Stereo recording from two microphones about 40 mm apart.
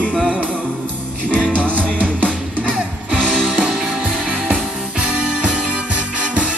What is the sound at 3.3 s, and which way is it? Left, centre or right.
Music, centre.